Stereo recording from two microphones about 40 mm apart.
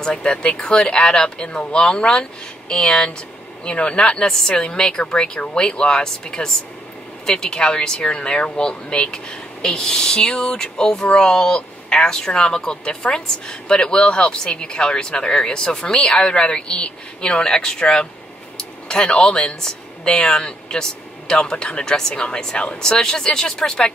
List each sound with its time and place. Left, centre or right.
0.0 s speech: left
9.6 s speech: centre